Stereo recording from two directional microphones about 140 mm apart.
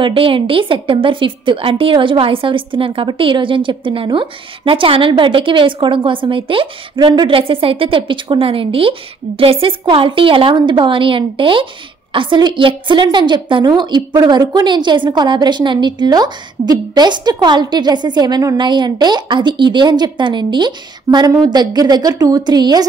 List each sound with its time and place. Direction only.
0.0 s a woman's voice: 40° right (ahead or behind)